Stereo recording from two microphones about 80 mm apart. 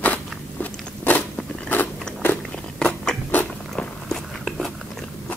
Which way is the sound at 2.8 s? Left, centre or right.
Centre.